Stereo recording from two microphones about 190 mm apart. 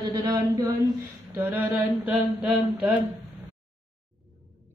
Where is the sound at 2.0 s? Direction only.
5° right (ahead or behind).